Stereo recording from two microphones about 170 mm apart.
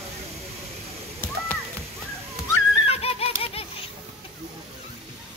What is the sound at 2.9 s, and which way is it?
Giggle, 35° left (ahead or behind).